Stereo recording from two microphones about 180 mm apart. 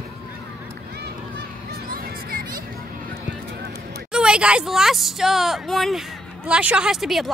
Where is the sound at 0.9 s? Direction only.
65° right (ahead or behind).